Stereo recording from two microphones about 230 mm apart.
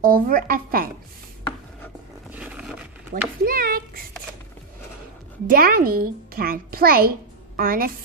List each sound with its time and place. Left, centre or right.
0.0 s a child's voice: right
2.3 s dog: centre
3.4 s a sound: right
5.5 s a child's voice: right